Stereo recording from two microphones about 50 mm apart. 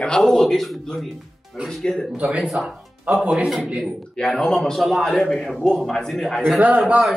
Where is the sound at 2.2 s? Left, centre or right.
Right.